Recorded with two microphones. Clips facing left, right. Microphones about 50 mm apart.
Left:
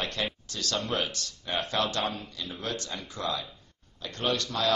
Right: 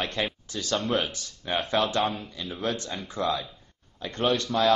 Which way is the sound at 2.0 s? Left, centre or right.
Centre.